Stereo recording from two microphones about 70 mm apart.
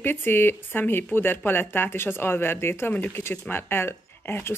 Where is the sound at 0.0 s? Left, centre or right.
Left.